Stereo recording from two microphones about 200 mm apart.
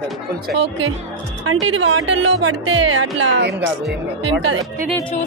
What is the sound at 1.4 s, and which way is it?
Speech, 80° right.